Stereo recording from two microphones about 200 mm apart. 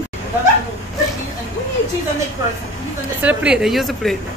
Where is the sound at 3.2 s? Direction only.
5° right (ahead or behind).